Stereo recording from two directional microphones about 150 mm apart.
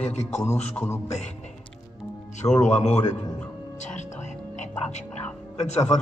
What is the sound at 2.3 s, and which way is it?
Speech, 50° left (ahead or behind).